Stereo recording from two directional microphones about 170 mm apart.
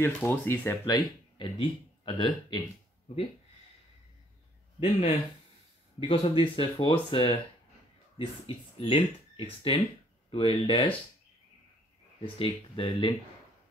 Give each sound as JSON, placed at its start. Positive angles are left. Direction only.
{"t": 0.0, "sound": "speech", "side_deg": 15}
{"t": 4.7, "sound": "speech", "side_deg": 35}
{"t": 12.4, "sound": "speech", "side_deg": 30}